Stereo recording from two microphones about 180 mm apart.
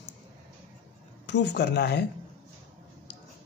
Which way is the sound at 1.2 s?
75° left (ahead or behind).